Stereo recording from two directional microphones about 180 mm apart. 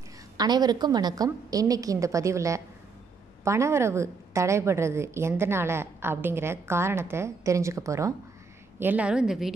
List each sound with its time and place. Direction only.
0.4 s a woman's voice: 20° right (ahead or behind); by 9.5 s 5° right (ahead or behind)